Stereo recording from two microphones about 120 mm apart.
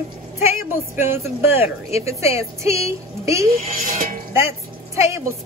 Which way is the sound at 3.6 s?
90° right.